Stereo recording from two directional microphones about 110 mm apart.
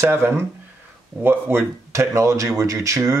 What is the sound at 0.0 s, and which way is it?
Speech, 20° right (ahead or behind).